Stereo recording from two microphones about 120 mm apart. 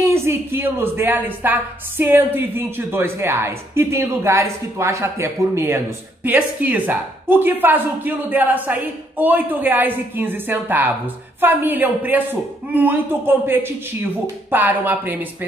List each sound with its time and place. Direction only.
0.0 s a woman's voice: 20° right (ahead or behind)